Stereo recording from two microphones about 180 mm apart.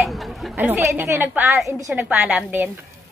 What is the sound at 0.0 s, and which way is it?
Chatter, centre (ahead or behind).